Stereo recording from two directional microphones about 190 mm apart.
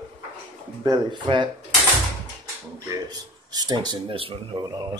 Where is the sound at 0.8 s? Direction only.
25° right (ahead or behind).